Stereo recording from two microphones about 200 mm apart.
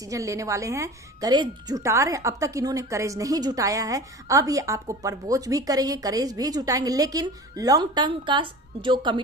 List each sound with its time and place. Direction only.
0.0 s speech: 15° right (ahead or behind)